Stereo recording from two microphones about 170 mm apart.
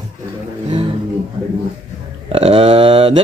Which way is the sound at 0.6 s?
30° right (ahead or behind).